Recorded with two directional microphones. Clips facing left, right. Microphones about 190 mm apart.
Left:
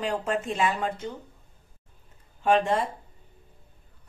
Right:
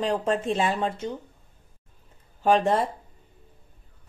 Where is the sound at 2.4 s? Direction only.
40° right (ahead or behind).